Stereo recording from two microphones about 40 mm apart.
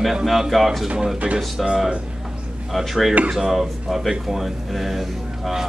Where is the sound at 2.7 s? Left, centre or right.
Centre.